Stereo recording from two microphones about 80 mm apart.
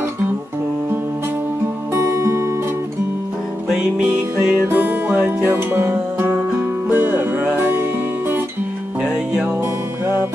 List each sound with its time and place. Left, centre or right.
2.0 s music: right
4.6 s music: right
9.0 s music: centre